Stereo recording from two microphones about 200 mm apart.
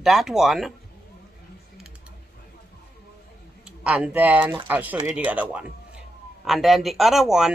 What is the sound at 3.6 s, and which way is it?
A woman's voice, 5° right (ahead or behind).